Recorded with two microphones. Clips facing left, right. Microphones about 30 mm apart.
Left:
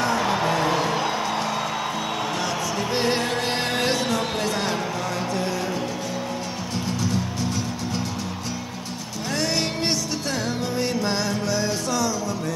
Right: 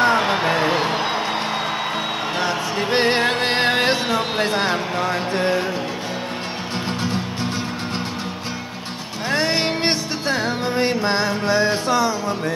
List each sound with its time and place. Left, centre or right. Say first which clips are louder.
0.0 s a sound: right 5 dB; right
2.4 s music: right 4 dB; right
6.9 s music: right 1 dB; right
9.3 s music: right 5 dB; right